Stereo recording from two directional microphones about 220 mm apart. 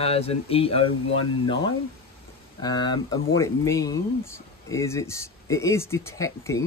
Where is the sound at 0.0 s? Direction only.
25° left (ahead or behind).